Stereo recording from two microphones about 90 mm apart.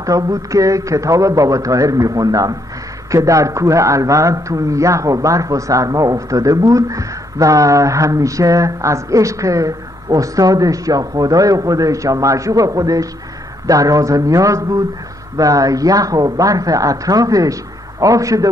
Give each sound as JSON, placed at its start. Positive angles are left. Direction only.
{"t": 0.0, "sound": "a man's voice", "side_deg": -40}